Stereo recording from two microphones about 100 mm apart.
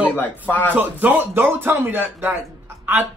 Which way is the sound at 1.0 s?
20° right (ahead or behind).